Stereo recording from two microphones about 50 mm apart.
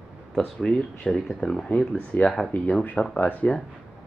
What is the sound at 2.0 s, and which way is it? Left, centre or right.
Speech, left.